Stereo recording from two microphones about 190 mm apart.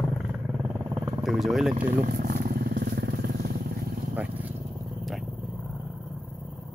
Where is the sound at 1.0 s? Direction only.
20° right (ahead or behind).